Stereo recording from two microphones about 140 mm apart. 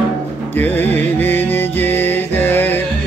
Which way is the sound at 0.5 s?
15° left (ahead or behind).